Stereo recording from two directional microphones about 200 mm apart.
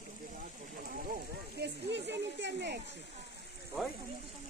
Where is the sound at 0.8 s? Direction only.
45° right (ahead or behind).